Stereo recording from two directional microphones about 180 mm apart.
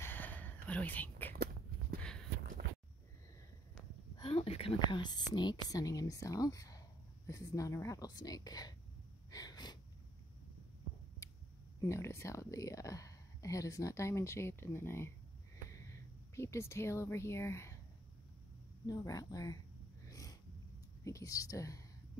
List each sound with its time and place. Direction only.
0.0 s whispering: 10° left (ahead or behind)
1.3 s a sound: 60° right (ahead or behind)
4.2 s a woman's voice: 35° left (ahead or behind)
9.3 s sneeze: 20° left (ahead or behind)
11.8 s speech: 15° left (ahead or behind)
18.9 s a woman's voice: 20° left (ahead or behind)
20.1 s snort: 20° left (ahead or behind)
21.0 s a woman's voice: 20° left (ahead or behind)